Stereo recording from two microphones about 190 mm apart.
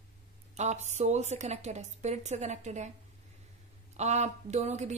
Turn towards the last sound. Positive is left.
turn(degrees=-35)  # may be behind; listen again after turning